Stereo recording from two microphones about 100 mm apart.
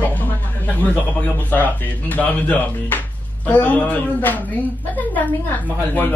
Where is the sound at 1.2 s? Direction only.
15° left (ahead or behind).